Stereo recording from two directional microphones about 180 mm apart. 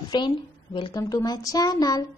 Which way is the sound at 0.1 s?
25° left (ahead or behind).